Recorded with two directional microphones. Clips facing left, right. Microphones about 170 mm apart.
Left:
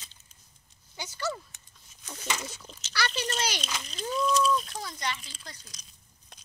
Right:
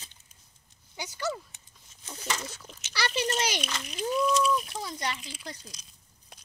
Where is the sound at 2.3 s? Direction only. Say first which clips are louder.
Even; 5° left (ahead or behind).